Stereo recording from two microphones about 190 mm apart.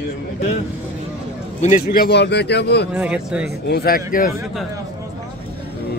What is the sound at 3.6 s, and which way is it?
Speech, 55° left (ahead or behind).